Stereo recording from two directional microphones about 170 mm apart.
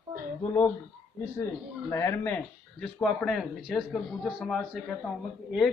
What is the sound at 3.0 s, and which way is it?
Speech, centre (ahead or behind).